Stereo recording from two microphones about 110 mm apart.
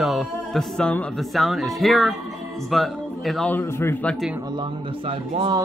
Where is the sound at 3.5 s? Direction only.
20° left (ahead or behind).